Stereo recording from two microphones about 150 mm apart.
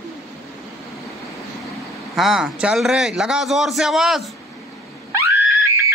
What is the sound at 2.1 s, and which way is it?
A man's voice, 5° right (ahead or behind).